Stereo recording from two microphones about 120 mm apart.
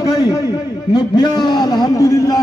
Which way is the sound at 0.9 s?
35° left (ahead or behind).